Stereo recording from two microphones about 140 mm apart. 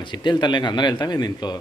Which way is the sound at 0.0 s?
35° left (ahead or behind).